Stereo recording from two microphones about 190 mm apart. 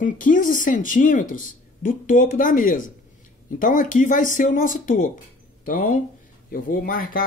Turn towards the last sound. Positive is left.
turn(degrees=50)  # may be behind; listen again after turning